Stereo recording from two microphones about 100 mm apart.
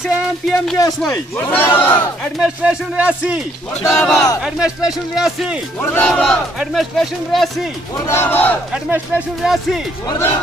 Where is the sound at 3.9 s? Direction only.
5° left (ahead or behind).